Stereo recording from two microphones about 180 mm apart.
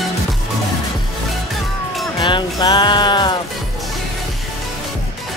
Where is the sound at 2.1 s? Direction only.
25° left (ahead or behind).